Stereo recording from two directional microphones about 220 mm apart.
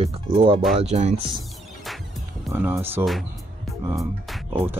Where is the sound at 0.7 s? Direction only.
30° right (ahead or behind).